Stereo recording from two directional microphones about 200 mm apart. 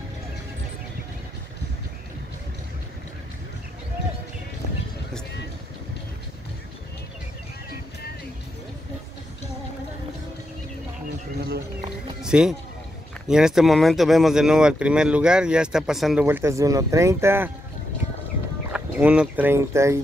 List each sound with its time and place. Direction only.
11.3 s a sound: 55° right (ahead or behind)
12.2 s music: 5° right (ahead or behind)
13.3 s speech: centre (ahead or behind)
16.3 s speech: 15° right (ahead or behind)
18.7 s speech: 5° right (ahead or behind)